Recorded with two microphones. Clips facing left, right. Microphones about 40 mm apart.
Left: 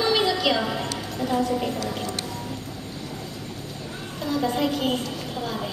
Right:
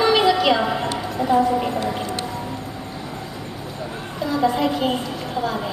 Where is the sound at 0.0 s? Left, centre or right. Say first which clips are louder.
Right 5 dB; centre.